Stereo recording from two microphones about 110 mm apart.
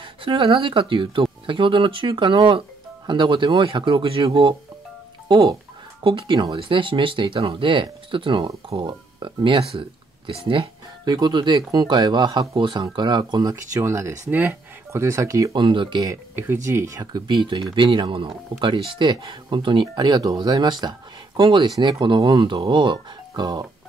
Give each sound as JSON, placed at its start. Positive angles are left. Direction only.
{"t": 0.0, "sound": "speech", "side_deg": -50}
{"t": 6.0, "sound": "speech", "side_deg": -50}
{"t": 11.1, "sound": "speech", "side_deg": -40}
{"t": 15.5, "sound": "speech", "side_deg": -45}
{"t": 16.3, "sound": "speech", "side_deg": -20}
{"t": 17.3, "sound": "speech", "side_deg": -45}
{"t": 21.7, "sound": "speech", "side_deg": -30}
{"t": 22.0, "sound": "speech", "side_deg": -45}